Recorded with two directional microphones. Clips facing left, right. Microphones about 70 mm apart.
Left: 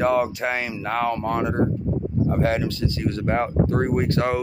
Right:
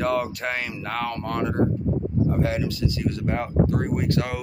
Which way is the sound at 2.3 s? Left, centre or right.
Left.